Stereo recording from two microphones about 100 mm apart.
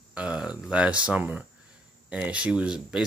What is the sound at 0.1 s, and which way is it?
Speech, 10° right (ahead or behind).